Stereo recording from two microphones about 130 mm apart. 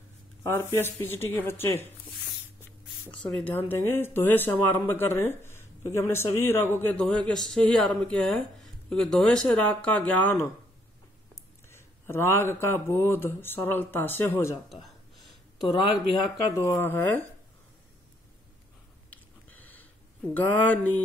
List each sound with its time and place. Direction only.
0.4 s speech: 20° left (ahead or behind)
3.3 s speech: 15° left (ahead or behind)
11.7 s speech: 20° left (ahead or behind)
14.7 s a sound: centre (ahead or behind)
16.5 s speech: 20° left (ahead or behind)
19.0 s a sound: 10° left (ahead or behind)
20.3 s speech: 10° left (ahead or behind)